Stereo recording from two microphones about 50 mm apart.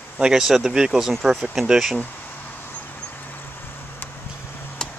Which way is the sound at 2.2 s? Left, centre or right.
Left.